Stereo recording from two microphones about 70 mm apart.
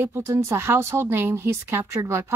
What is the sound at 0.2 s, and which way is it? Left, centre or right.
Speech, right.